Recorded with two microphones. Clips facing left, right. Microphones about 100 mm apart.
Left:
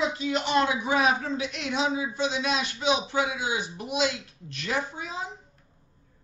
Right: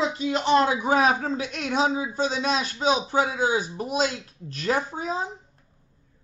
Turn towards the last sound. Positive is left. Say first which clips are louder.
# right 5 dB
turn(degrees=-40)  # may be behind; listen again after turning